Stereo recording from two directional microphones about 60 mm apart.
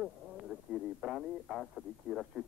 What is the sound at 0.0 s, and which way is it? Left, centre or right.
Speech, centre.